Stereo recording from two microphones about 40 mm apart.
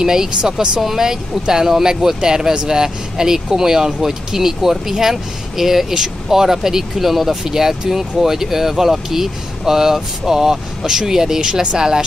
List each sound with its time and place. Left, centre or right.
0.0 s speech: centre